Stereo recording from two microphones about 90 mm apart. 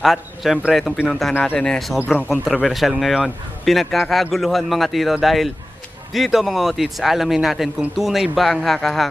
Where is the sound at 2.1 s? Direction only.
20° left (ahead or behind).